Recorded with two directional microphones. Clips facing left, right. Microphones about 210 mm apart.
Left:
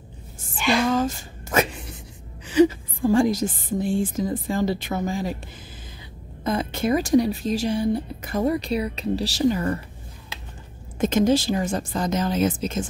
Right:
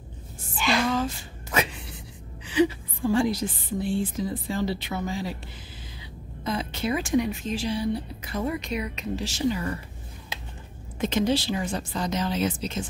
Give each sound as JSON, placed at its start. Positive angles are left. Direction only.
{"t": 0.9, "sound": "a sound", "side_deg": 45}
{"t": 2.4, "sound": "a woman's voice", "side_deg": 45}
{"t": 6.4, "sound": "speech", "side_deg": 50}
{"t": 11.0, "sound": "speech", "side_deg": 45}